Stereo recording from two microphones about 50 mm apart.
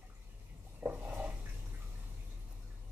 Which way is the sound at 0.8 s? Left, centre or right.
Right.